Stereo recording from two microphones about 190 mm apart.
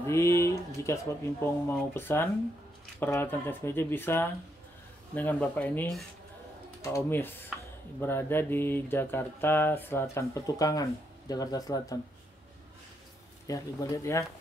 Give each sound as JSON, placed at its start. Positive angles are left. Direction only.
{"t": 0.0, "sound": "speech", "side_deg": 15}
{"t": 13.5, "sound": "speech", "side_deg": 15}